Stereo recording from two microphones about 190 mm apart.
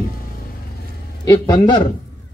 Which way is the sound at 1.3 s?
20° left (ahead or behind).